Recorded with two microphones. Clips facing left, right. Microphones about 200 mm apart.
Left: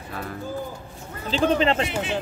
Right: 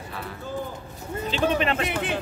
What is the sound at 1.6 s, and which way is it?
Speech, 30° left (ahead or behind).